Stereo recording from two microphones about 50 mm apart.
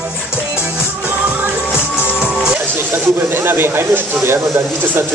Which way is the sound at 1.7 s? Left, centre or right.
Right.